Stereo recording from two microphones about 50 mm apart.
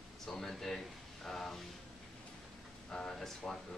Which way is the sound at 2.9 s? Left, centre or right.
Centre.